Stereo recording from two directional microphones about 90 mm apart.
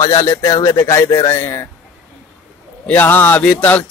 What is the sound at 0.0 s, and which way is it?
Speech, 35° left (ahead or behind).